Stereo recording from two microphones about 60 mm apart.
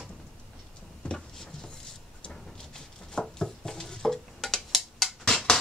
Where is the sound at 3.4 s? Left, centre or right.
Centre.